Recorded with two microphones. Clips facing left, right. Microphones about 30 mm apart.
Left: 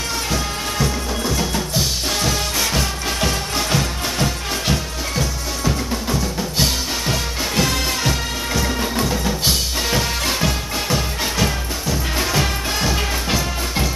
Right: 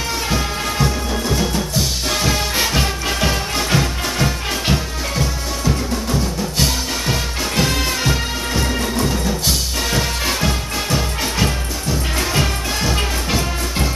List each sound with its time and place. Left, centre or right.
2.5 s music: right
3.5 s music: centre
9.9 s music: centre